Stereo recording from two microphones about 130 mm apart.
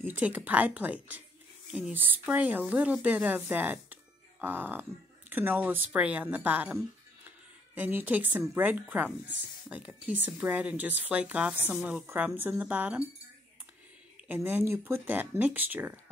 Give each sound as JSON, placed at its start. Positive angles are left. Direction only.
{"t": 0.0, "sound": "speech", "side_deg": -15}
{"t": 14.2, "sound": "speech", "side_deg": -15}